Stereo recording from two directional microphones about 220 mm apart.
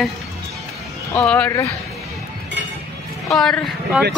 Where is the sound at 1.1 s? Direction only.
5° left (ahead or behind).